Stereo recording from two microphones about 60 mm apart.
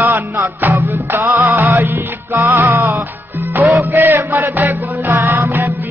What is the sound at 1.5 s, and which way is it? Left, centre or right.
Music, right.